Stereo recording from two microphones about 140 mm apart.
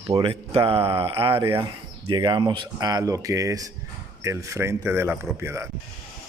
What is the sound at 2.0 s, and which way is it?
Speech, 30° right (ahead or behind).